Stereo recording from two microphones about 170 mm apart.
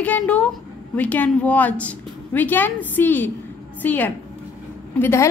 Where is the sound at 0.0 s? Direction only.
10° left (ahead or behind).